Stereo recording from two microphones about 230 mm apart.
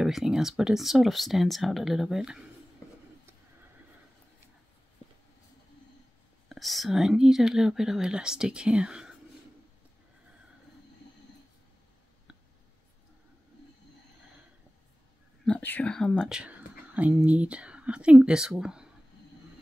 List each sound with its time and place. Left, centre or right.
0.0 s speech: centre
6.5 s speech: centre
15.4 s speech: centre